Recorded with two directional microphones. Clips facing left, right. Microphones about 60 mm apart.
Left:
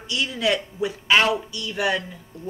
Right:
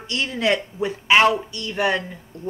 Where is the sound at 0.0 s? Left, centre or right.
Right.